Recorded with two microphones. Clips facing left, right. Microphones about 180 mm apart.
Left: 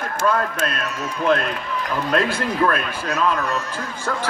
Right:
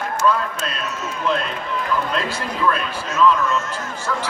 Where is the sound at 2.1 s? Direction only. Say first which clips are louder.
Left 4 dB; 55° left (ahead or behind).